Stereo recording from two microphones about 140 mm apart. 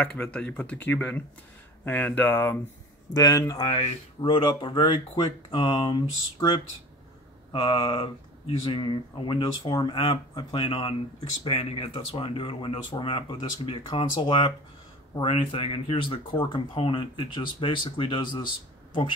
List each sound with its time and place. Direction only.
0.0 s speech: 10° left (ahead or behind)
3.1 s speech: 25° left (ahead or behind)